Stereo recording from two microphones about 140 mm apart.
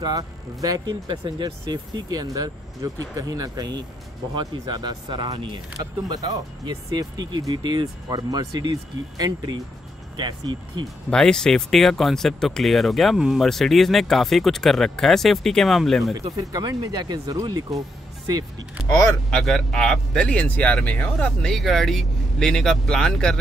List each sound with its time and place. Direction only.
0.0 s speech: 25° right (ahead or behind)
11.1 s speech: 5° left (ahead or behind)
16.3 s speech: 25° right (ahead or behind)
18.9 s speech: 25° left (ahead or behind)
19.3 s speech: 5° left (ahead or behind)